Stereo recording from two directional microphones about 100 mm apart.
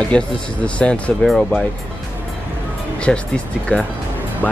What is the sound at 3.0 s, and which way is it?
Speech, 10° left (ahead or behind).